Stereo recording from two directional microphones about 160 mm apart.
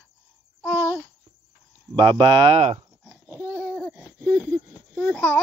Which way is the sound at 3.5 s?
10° left (ahead or behind).